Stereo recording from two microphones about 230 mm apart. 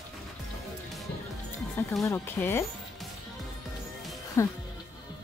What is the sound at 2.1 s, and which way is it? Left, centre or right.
Speech, centre.